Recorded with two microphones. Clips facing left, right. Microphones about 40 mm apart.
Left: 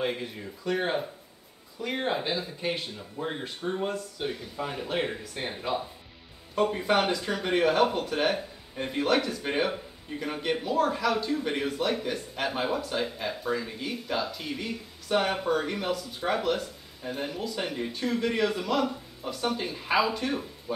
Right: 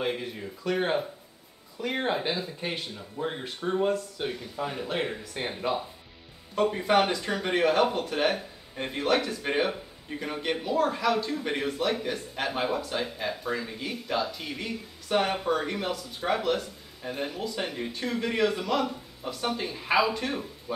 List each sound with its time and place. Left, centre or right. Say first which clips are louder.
0.0 s speech: even; centre
5.4 s speech: right 2 dB; centre
6.5 s speech: right 1 dB; centre